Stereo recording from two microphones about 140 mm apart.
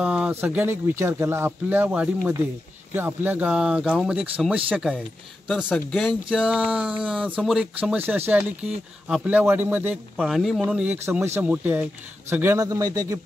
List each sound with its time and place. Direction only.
0.0 s speech: 10° right (ahead or behind)
6.2 s speech: 5° right (ahead or behind)
10.2 s speech: centre (ahead or behind); by 13.2 s 25° right (ahead or behind)